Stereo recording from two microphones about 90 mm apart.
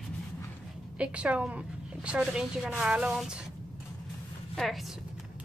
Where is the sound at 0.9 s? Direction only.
15° right (ahead or behind).